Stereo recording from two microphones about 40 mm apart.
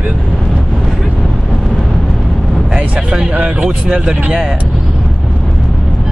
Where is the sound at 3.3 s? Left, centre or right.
Right.